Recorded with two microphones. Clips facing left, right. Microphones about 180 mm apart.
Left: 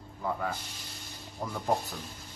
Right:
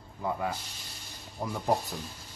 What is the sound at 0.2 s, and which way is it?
Speech, 10° right (ahead or behind).